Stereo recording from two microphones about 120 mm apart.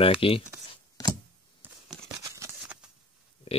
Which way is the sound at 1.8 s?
Centre (ahead or behind).